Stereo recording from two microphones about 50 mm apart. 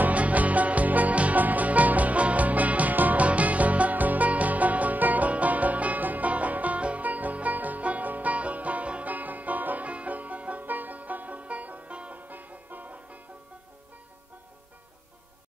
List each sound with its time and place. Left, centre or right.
0.0 s music: right